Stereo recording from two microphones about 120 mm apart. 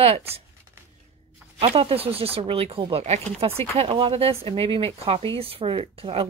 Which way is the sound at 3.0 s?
65° right (ahead or behind).